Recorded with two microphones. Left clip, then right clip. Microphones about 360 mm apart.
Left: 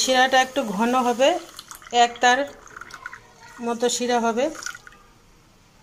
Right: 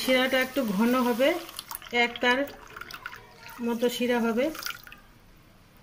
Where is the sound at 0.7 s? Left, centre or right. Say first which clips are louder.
Left 5 dB; left.